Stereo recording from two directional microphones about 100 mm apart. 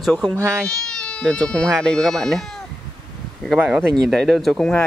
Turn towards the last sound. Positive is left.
turn(degrees=5)  # may be behind; listen again after turning